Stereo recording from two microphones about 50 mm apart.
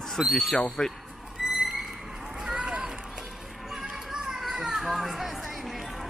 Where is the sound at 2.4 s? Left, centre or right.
Centre.